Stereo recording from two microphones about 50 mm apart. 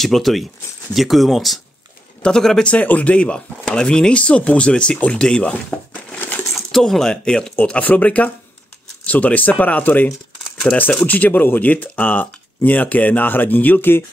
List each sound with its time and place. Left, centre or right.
0.0 s speech: centre
2.2 s speech: centre
2.6 s speech: left
6.1 s coin: left
6.5 s speech: centre
7.5 s speech: left
10.0 s a sound: centre
11.1 s speech: left